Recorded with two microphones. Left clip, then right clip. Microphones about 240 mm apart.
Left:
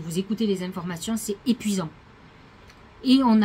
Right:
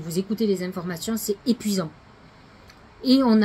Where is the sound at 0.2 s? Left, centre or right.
Centre.